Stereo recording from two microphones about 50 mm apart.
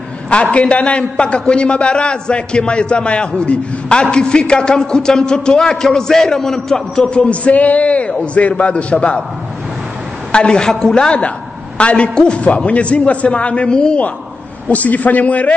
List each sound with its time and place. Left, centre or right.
0.3 s a man's voice: left; by 7.2 s centre
7.2 s a man's voice: left
10.3 s a woman's voice: centre
11.1 s a man's voice: left